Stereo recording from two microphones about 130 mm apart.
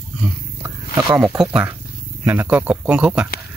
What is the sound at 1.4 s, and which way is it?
Speech, 10° right (ahead or behind).